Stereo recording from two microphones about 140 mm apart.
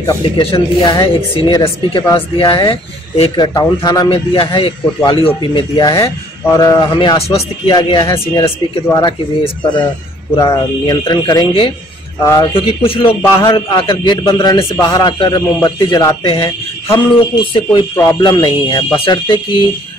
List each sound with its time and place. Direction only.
0.4 s a man's voice: 40° left (ahead or behind); by 12.4 s 25° left (ahead or behind)
12.5 s a man's voice: 40° left (ahead or behind)